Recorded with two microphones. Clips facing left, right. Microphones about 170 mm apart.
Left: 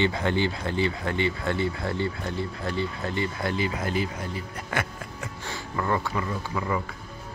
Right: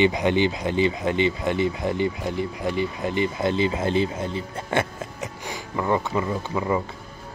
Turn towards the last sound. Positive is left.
turn(degrees=-20)  # may be behind; listen again after turning